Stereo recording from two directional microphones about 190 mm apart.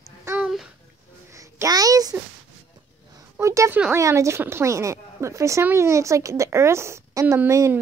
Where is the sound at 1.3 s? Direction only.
15° right (ahead or behind).